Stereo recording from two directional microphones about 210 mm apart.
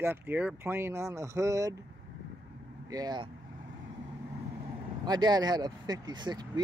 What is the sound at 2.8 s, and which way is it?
Speech, 20° right (ahead or behind).